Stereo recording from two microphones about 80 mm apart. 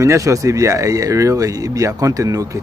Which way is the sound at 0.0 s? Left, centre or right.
Right.